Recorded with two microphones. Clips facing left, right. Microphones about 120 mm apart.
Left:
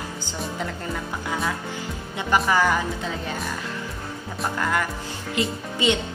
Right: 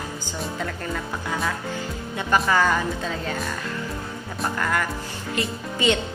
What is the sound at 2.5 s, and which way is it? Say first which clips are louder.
Speech: even; 15° left (ahead or behind).